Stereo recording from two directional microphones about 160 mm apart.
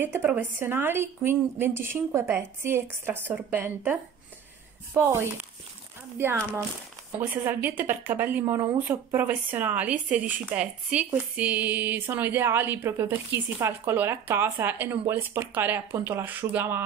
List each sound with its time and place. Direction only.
0.0 s a woman's voice: 15° right (ahead or behind)